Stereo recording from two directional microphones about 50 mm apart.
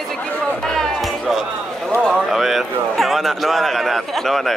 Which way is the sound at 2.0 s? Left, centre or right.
Centre.